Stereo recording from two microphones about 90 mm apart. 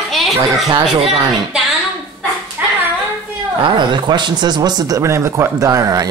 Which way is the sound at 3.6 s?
60° right (ahead or behind).